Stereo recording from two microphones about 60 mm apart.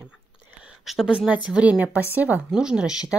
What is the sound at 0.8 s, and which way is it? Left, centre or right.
Speech, centre.